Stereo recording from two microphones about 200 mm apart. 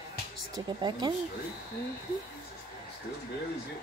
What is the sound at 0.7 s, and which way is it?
Speech, 20° right (ahead or behind).